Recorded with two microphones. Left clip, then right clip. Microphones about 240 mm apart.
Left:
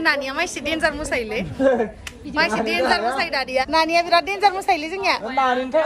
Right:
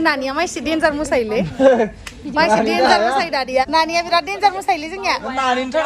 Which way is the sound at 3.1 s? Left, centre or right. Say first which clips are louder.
Right 4 dB; centre.